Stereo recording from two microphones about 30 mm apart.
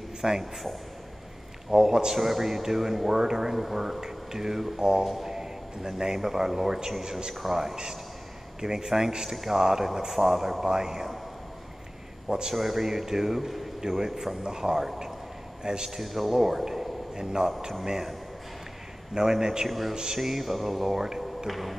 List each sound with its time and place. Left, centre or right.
0.2 s a man's voice: centre
1.7 s a man's voice: centre
7.7 s a man's voice: right
12.3 s a man's voice: right
12.5 s a man's voice: centre
15.6 s a man's voice: right
15.9 s a man's voice: centre
19.1 s a man's voice: centre
21.5 s music: centre